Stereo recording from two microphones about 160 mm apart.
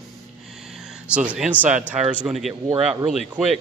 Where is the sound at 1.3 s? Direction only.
10° right (ahead or behind).